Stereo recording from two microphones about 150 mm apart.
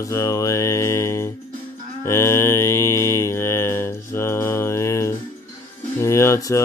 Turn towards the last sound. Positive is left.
turn(degrees=20)  # may be behind; listen again after turning